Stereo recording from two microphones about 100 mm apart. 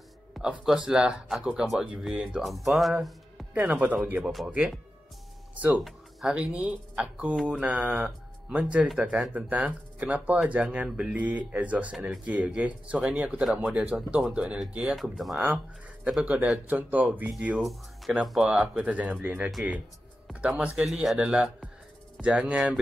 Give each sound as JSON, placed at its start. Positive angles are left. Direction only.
{"t": 0.4, "sound": "speech", "side_deg": -10}
{"t": 3.5, "sound": "speech", "side_deg": -15}
{"t": 5.9, "sound": "speech", "side_deg": -10}
{"t": 15.0, "sound": "speech", "side_deg": 0}
{"t": 15.3, "sound": "speech", "side_deg": -15}
{"t": 17.3, "sound": "speech", "side_deg": -5}